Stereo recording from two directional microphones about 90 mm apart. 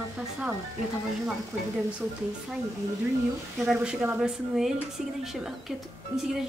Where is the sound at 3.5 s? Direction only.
Centre (ahead or behind).